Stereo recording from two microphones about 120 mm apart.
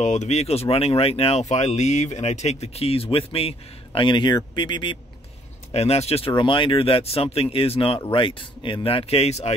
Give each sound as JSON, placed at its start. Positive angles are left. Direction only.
{"t": 0.0, "sound": "speech", "side_deg": 75}
{"t": 5.7, "sound": "speech", "side_deg": 60}